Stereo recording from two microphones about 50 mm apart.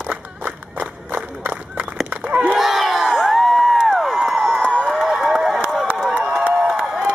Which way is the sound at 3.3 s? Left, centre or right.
Centre.